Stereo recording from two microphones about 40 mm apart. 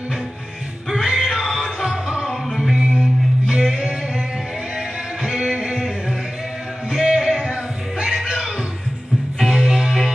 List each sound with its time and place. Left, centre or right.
1.1 s music: centre
2.2 s music: centre
2.7 s music: centre
9.4 s music: centre